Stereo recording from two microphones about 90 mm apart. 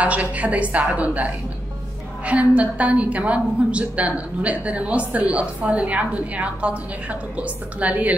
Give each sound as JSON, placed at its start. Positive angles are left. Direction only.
{"t": 0.0, "sound": "a woman's voice", "side_deg": -15}